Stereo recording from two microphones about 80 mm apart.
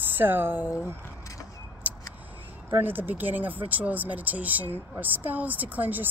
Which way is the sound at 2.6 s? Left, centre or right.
Right.